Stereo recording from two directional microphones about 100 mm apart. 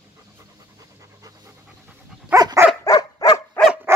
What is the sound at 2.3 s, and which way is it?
Dog, 40° right (ahead or behind).